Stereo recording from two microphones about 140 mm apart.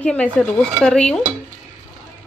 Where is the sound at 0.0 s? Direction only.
10° left (ahead or behind).